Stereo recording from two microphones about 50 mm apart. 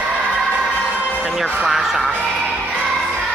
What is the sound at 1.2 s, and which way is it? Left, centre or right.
Music, centre.